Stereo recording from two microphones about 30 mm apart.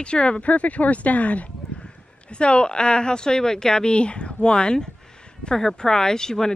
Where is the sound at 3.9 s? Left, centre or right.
Left.